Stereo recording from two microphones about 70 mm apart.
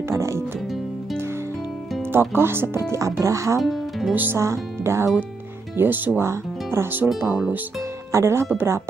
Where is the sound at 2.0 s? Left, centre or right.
Right.